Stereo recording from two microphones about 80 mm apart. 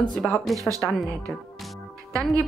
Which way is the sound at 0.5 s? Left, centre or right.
Right.